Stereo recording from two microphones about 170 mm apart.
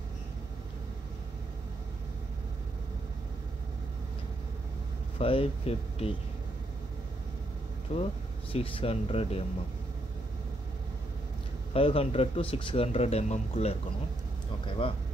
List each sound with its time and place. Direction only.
5.2 s speech: 35° left (ahead or behind)
7.9 s speech: 35° left (ahead or behind)
11.7 s speech: 35° left (ahead or behind)
14.8 s speech: 30° left (ahead or behind)